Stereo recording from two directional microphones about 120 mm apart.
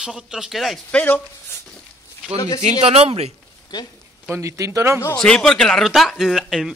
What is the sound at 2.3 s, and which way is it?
Speech, 30° left (ahead or behind).